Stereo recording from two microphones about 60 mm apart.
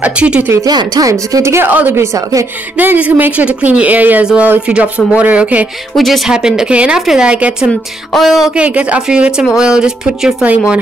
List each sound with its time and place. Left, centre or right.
0.0 s speech: centre
0.5 s speech: right
1.7 s speech: right
5.9 s speech: centre
6.3 s speech: centre
8.1 s speech: centre
8.5 s speech: right